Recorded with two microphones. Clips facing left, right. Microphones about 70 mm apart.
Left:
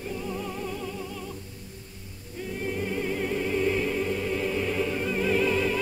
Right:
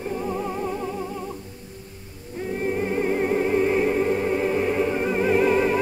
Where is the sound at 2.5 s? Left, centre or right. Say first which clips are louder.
Right 6 dB; right.